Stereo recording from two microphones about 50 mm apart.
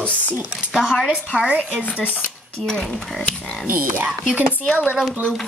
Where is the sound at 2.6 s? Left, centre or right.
Centre.